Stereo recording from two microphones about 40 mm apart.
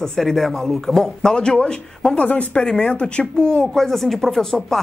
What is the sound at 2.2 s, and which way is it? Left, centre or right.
Speech, left.